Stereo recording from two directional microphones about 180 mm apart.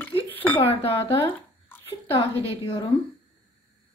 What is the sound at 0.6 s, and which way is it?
Speech, 30° left (ahead or behind).